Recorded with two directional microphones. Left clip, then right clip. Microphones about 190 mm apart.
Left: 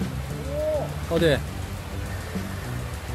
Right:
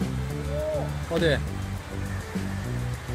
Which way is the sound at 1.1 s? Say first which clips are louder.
Left 3 dB; centre (ahead or behind).